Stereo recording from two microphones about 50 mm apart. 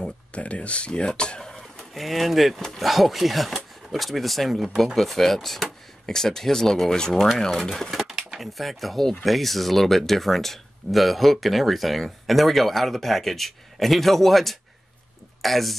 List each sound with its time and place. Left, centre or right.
0.3 s speech: left; by 7.7 s centre
7.9 s speech: centre